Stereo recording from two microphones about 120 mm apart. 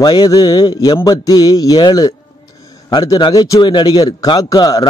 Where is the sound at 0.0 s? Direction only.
35° left (ahead or behind).